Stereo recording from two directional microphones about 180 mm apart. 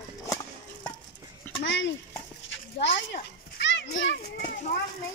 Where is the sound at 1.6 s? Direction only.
80° left.